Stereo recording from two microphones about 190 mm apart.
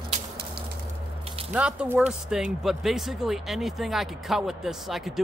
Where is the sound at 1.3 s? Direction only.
30° right (ahead or behind).